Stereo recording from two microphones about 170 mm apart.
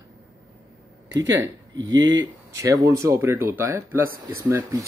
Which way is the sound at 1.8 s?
25° right (ahead or behind).